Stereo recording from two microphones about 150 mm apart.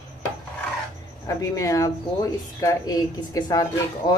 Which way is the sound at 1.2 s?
20° left (ahead or behind).